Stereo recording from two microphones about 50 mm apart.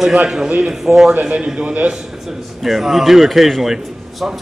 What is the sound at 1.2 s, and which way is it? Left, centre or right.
Speech, centre.